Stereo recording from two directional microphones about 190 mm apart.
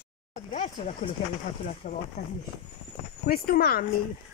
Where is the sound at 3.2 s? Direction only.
50° left (ahead or behind).